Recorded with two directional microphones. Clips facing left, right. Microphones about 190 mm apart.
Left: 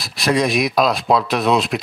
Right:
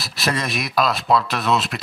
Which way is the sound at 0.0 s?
Centre (ahead or behind).